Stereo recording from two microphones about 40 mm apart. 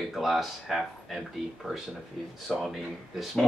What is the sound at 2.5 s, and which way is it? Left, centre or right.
Speech, centre.